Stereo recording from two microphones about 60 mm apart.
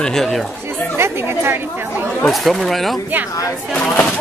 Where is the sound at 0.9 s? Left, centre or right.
Right.